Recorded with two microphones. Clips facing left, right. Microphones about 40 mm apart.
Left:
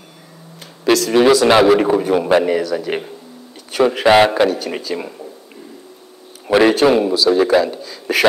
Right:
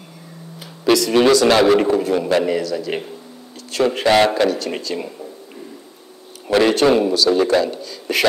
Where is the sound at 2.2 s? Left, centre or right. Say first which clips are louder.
Left 3 dB; left.